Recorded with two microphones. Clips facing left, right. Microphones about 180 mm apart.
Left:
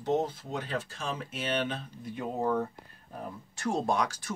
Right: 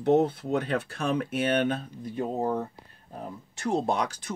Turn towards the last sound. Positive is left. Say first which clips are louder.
# right 1 dB
turn(degrees=-20)  # may be behind; listen again after turning